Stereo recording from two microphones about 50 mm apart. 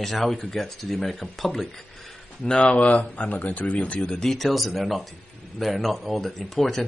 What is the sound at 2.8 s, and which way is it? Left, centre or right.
Speech, left.